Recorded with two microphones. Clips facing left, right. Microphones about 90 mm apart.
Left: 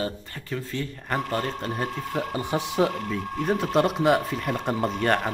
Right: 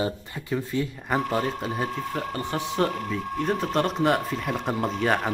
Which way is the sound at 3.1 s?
Centre (ahead or behind).